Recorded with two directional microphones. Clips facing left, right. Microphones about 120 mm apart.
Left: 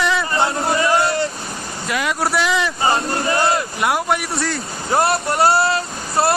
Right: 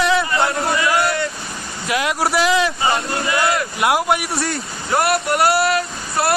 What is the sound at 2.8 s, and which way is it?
Choir, 35° left (ahead or behind).